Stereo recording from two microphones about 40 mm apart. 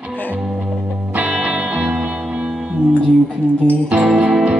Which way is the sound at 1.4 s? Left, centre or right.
Right.